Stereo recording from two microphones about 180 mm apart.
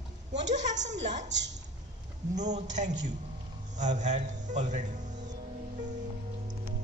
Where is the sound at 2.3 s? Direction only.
40° right (ahead or behind).